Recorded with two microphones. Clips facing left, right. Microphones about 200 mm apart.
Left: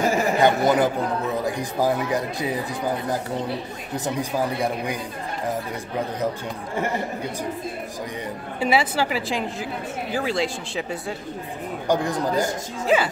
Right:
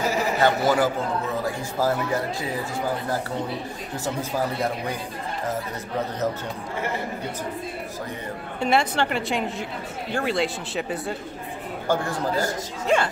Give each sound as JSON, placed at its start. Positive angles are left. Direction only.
{"t": 0.0, "sound": "a sound", "side_deg": 50}
{"t": 0.4, "sound": "a man's voice", "side_deg": 20}
{"t": 3.9, "sound": "speech", "side_deg": 15}
{"t": 8.5, "sound": "a woman's voice", "side_deg": 5}
{"t": 11.9, "sound": "speech", "side_deg": 15}
{"t": 12.8, "sound": "a woman's voice", "side_deg": 5}